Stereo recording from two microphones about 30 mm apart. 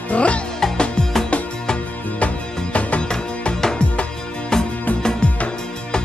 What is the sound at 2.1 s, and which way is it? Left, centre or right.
Music, left.